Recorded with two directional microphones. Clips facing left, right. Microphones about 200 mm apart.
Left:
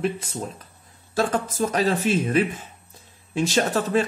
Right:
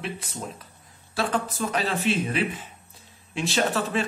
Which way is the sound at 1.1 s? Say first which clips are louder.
Left 3 dB; 45° left (ahead or behind).